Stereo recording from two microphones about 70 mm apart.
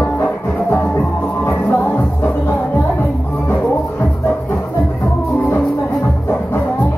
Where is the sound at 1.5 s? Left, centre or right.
Left.